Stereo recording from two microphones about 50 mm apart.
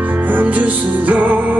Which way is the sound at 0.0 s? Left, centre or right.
Right.